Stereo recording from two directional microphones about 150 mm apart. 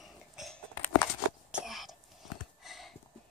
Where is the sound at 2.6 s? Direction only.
Centre (ahead or behind).